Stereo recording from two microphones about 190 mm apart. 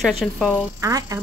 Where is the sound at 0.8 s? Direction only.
20° right (ahead or behind).